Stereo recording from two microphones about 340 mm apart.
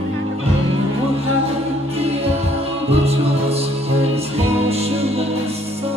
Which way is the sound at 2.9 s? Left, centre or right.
Centre.